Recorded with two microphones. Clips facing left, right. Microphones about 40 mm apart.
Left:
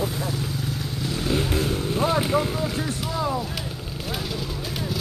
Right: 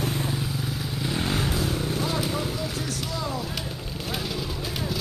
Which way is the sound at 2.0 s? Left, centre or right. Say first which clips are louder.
Left 10 dB; left.